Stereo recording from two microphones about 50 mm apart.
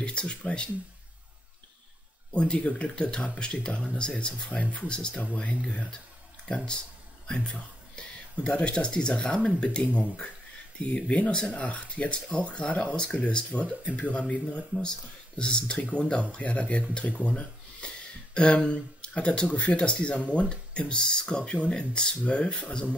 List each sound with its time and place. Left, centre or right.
0.0 s speech: left
2.3 s speech: left
5.2 s speech: left
11.1 s speech: left